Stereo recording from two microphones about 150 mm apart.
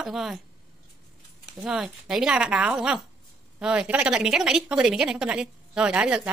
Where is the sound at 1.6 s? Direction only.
Centre (ahead or behind).